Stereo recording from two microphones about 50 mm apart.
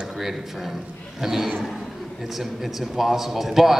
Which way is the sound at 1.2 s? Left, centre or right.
Centre.